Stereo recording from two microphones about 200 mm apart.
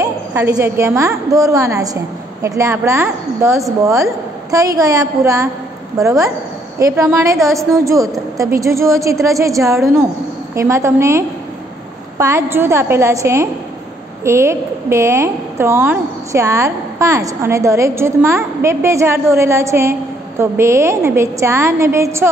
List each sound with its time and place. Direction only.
0.0 s a woman's voice: 15° right (ahead or behind)